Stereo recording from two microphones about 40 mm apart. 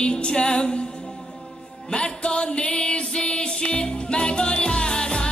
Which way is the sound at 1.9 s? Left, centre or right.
Left.